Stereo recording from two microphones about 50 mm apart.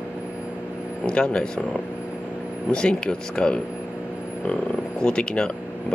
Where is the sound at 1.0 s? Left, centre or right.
Left.